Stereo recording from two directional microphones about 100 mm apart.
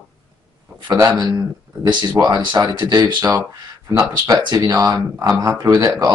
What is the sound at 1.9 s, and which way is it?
Speech, 45° right (ahead or behind).